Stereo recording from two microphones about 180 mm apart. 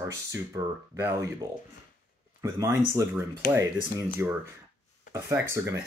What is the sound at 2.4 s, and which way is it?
Speech, 15° right (ahead or behind).